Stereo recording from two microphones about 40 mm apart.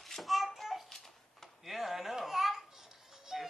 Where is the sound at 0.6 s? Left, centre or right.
Centre.